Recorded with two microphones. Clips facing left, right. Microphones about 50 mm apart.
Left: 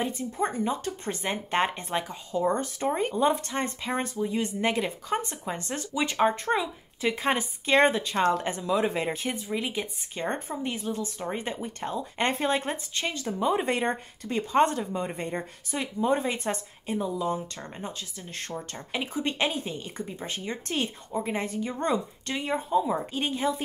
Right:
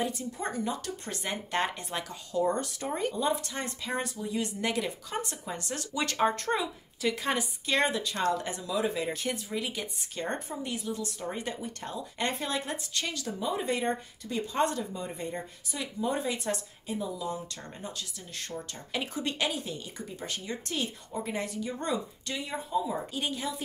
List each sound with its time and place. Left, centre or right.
0.0 s speech: left
5.9 s speech: centre; by 9.1 s left
9.1 s speech: left
13.5 s speech: left
18.9 s speech: left